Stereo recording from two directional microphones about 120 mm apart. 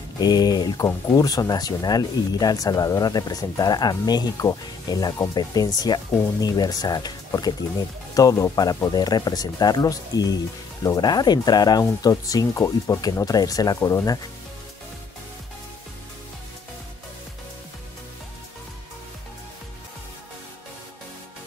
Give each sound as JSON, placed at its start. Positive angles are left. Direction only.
{"t": 0.2, "sound": "speech", "side_deg": 35}